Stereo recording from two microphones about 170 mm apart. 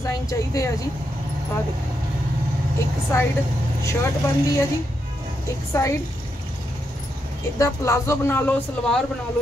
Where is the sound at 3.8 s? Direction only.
15° left (ahead or behind).